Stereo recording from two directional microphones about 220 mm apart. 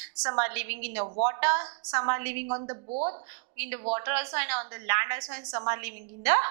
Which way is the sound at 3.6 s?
10° right (ahead or behind).